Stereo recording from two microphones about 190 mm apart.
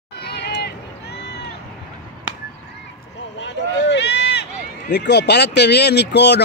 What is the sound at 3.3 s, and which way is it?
Speech, 70° left (ahead or behind).